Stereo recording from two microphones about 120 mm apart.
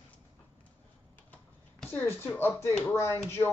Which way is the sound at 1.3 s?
15° left (ahead or behind).